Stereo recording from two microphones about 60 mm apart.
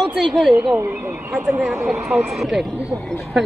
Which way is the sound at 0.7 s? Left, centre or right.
Right.